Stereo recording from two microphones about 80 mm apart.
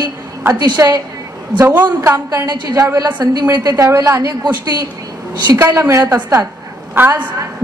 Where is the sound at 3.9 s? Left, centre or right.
Right.